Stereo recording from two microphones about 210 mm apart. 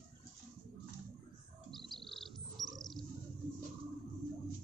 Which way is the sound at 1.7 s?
Centre (ahead or behind).